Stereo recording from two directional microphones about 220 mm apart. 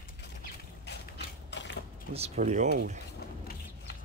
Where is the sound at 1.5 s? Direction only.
55° left (ahead or behind).